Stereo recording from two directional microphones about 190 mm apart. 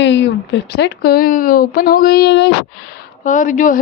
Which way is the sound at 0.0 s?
70° left (ahead or behind).